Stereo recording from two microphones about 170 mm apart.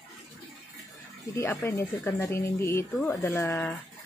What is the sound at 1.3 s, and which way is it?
Speech, 15° left (ahead or behind).